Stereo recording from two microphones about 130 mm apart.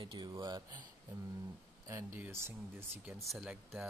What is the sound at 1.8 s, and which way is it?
Speech, 20° right (ahead or behind).